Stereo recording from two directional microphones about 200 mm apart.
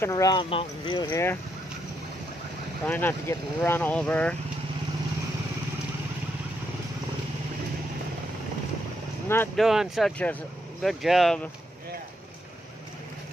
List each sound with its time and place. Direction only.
0.0 s speech: 15° left (ahead or behind)
2.8 s speech: 10° left (ahead or behind)
9.6 s speech: centre (ahead or behind)